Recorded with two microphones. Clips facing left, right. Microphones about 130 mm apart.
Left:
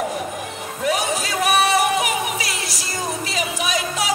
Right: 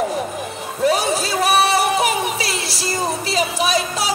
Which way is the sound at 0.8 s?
30° right (ahead or behind).